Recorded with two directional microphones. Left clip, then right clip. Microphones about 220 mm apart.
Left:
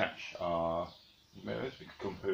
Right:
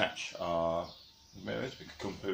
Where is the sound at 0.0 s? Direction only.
30° right (ahead or behind).